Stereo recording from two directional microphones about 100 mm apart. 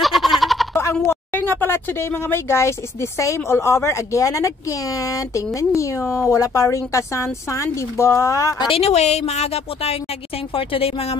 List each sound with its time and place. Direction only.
0.0 s a sound: centre (ahead or behind)
1.0 s speech: 20° left (ahead or behind)
8.6 s a woman's voice: 80° left
10.5 s a woman's voice: 70° left (ahead or behind)